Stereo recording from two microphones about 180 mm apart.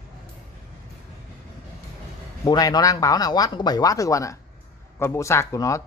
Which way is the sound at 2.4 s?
20° left (ahead or behind).